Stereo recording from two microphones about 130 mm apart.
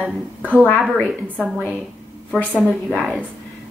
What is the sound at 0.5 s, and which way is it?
Speech, 10° left (ahead or behind).